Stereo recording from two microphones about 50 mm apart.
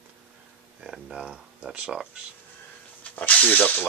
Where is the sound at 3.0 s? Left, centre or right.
Left.